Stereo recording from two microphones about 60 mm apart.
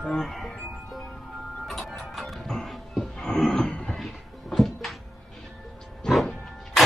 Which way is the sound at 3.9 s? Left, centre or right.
Centre.